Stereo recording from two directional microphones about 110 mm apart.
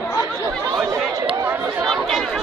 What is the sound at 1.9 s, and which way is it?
Chatter, 5° left (ahead or behind).